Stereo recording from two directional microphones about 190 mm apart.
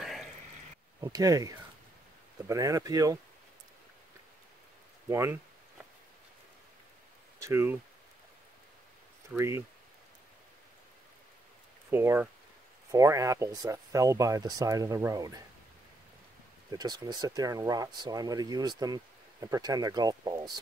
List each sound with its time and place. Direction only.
0.0 s a sound: centre (ahead or behind)
1.0 s speech: 20° right (ahead or behind)
5.1 s a sound: 10° right (ahead or behind)
7.3 s speech: 15° right (ahead or behind)
9.3 s speech: 15° right (ahead or behind)
11.9 s speech: 10° right (ahead or behind)
16.7 s speech: 20° right (ahead or behind)